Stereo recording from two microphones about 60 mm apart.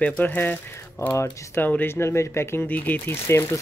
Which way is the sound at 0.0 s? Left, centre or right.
Left.